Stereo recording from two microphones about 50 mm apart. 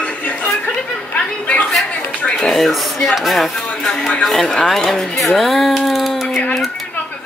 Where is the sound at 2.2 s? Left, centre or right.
Centre.